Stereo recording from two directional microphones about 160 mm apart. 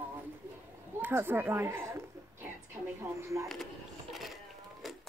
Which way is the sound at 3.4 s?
Centre (ahead or behind).